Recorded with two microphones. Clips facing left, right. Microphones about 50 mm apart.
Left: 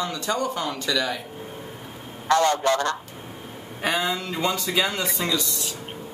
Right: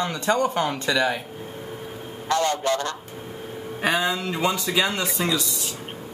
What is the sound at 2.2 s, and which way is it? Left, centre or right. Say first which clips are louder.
Honk: left 3 dB; left.